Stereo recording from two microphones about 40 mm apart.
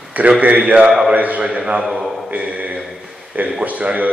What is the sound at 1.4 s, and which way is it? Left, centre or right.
Speech, right.